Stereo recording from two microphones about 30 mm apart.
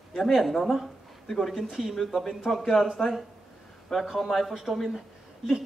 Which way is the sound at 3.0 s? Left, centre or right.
Centre.